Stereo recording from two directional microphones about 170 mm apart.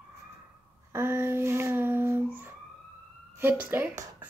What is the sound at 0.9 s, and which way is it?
Child singing, 15° right (ahead or behind).